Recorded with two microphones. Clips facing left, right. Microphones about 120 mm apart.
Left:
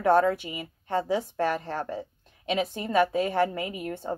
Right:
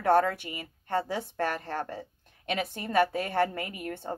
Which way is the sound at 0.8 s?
55° right (ahead or behind).